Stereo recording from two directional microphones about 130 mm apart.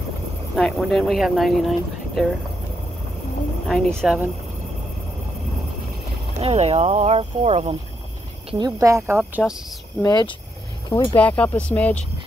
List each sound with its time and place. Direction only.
0.6 s speech: 5° left (ahead or behind)
3.6 s speech: centre (ahead or behind)
6.4 s speech: 55° right (ahead or behind)
8.5 s speech: 30° right (ahead or behind)
9.4 s speech: 5° left (ahead or behind)
10.0 s speech: 35° left (ahead or behind)
11.1 s speech: 10° left (ahead or behind)